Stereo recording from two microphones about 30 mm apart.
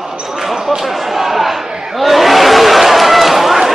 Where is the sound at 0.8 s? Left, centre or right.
Centre.